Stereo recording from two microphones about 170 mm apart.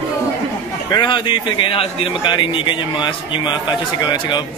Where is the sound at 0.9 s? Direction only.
25° left (ahead or behind).